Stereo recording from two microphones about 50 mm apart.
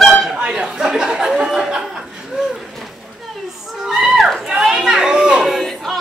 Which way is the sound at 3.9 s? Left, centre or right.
Centre.